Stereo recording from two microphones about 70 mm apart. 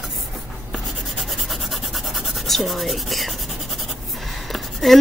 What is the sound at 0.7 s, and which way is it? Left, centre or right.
Writing, centre.